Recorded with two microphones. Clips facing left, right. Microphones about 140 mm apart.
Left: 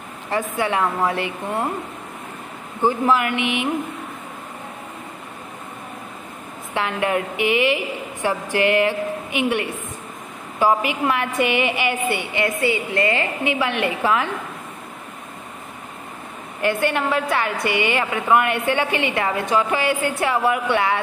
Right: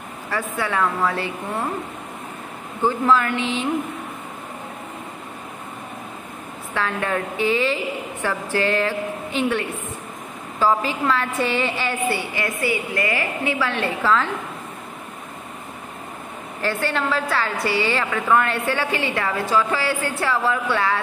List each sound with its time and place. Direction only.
0.3 s a woman's voice: 20° left (ahead or behind)
2.8 s a woman's voice: 15° left (ahead or behind)
6.7 s a woman's voice: 15° left (ahead or behind)
16.6 s a woman's voice: 15° left (ahead or behind)